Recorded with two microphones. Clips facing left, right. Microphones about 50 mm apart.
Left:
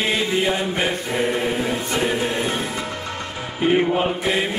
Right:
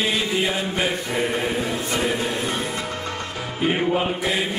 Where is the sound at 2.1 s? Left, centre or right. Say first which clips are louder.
Left 2 dB; left.